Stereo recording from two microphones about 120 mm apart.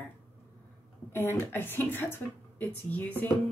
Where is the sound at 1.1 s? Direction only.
20° left (ahead or behind).